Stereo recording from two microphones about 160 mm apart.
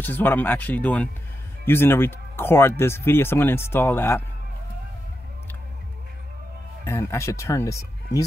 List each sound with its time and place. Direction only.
0.0 s speech: 10° left (ahead or behind)
6.8 s speech: 15° left (ahead or behind)